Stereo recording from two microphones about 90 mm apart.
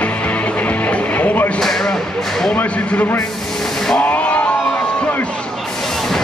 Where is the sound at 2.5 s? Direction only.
15° left (ahead or behind).